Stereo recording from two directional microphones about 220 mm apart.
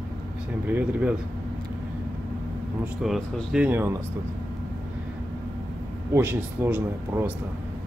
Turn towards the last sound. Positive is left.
turn(degrees=-10)  # may be behind; listen again after turning